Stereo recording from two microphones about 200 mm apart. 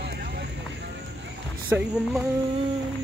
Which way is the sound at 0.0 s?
55° right (ahead or behind).